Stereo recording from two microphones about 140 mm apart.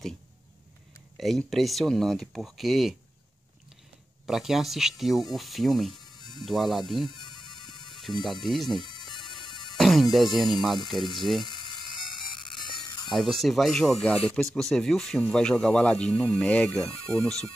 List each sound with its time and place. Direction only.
1.1 s speech: centre (ahead or behind)
4.3 s speech: centre (ahead or behind)
6.0 s music: 30° left (ahead or behind)
6.4 s speech: centre (ahead or behind)
7.1 s music: 30° left (ahead or behind)
7.9 s speech: centre (ahead or behind)
8.8 s music: 30° left (ahead or behind)
9.8 s music: centre (ahead or behind)
10.1 s speech: centre (ahead or behind)
11.4 s electric toothbrush: 30° left (ahead or behind)
12.5 s music: 35° left (ahead or behind)
13.1 s speech: centre (ahead or behind)